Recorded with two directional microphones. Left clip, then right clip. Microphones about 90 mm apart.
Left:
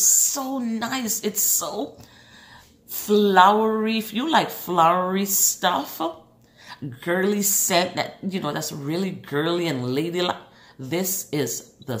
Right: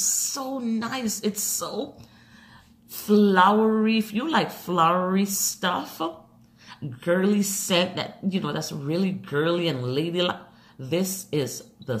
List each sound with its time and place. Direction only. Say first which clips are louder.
0.0 s a woman's voice: left 6 dB; 40° left (ahead or behind)
2.9 s a woman's voice: left 2 dB; 40° left (ahead or behind)